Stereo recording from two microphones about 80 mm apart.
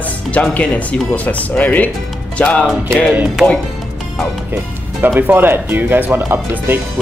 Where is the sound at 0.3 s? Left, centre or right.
Centre.